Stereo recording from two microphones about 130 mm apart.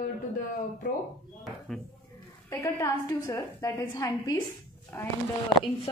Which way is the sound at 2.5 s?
25° left (ahead or behind).